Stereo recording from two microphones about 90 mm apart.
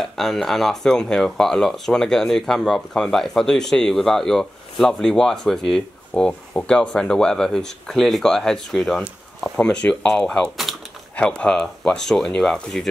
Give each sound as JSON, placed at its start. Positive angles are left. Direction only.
{"t": 0.0, "sound": "speech", "side_deg": 5}